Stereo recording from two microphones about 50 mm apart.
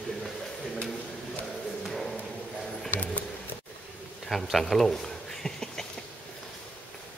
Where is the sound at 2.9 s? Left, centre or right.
Left.